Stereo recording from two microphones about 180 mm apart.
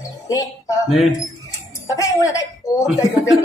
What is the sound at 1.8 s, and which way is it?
A woman's voice, 15° left (ahead or behind).